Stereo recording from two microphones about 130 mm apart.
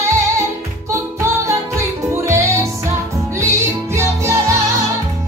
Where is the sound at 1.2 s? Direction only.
20° right (ahead or behind).